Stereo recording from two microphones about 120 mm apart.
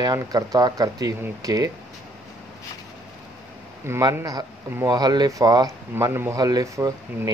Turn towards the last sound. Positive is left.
turn(degrees=-25)  # may be behind; listen again after turning